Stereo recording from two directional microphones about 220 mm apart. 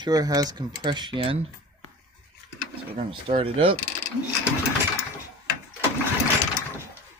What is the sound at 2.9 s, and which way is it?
Speech, 25° right (ahead or behind).